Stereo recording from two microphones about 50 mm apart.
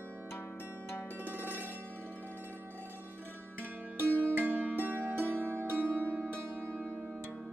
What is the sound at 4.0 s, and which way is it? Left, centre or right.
Music, right.